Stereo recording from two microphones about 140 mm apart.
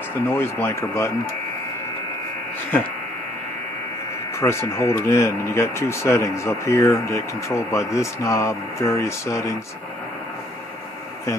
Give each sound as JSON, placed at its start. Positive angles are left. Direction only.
{"t": 0.1, "sound": "speech", "side_deg": 15}
{"t": 4.4, "sound": "speech", "side_deg": 20}